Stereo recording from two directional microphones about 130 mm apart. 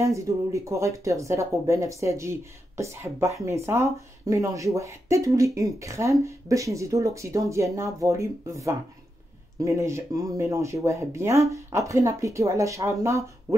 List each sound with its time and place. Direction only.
0.0 s speech: 25° right (ahead or behind)